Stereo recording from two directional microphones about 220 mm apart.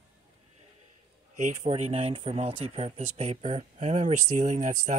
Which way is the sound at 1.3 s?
30° right (ahead or behind).